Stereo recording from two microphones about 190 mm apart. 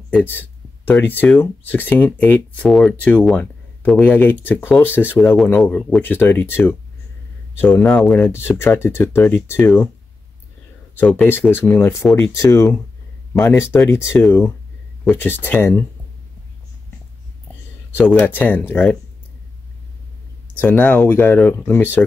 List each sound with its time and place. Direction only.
0.2 s speech: 10° left (ahead or behind)
5.3 s speech: centre (ahead or behind)
11.0 s speech: 10° left (ahead or behind)
17.9 s speech: 10° left (ahead or behind)
20.6 s speech: 10° left (ahead or behind)